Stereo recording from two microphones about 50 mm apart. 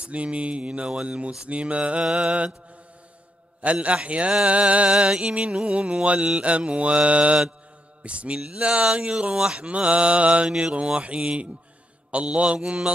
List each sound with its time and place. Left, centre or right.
0.0 s speech: right
3.6 s speech: right